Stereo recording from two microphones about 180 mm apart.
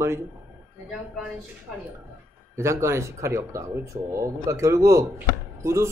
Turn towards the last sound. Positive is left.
turn(degrees=-15)  # may be behind; listen again after turning